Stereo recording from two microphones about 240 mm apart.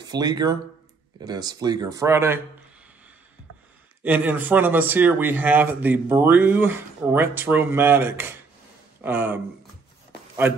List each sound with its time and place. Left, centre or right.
0.0 s speech: centre
4.0 s speech: centre